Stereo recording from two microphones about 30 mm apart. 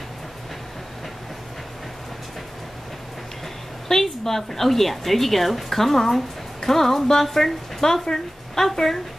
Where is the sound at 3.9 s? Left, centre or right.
Centre.